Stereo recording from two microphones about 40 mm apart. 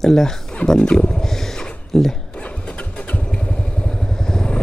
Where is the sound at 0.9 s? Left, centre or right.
Centre.